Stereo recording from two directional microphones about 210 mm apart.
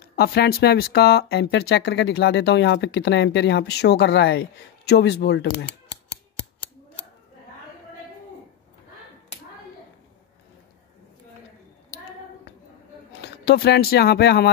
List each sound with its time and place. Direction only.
0.0 s speech: 50° left (ahead or behind)
13.2 s speech: 50° left (ahead or behind)